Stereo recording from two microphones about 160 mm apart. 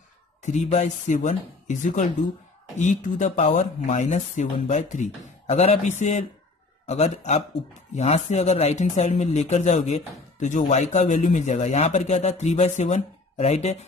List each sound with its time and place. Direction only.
0.4 s speech: 50° left (ahead or behind)